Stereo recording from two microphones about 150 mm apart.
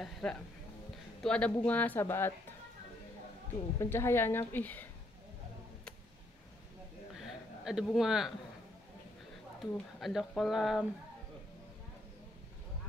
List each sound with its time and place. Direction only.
0.0 s speech: 5° left (ahead or behind)
3.8 s speech: 15° left (ahead or behind)
7.2 s a sound: 5° right (ahead or behind)
9.6 s speech: centre (ahead or behind)